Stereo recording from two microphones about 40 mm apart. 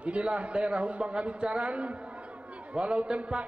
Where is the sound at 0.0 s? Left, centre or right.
Right.